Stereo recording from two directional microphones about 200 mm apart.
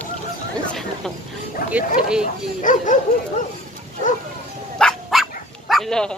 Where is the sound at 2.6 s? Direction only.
40° left (ahead or behind).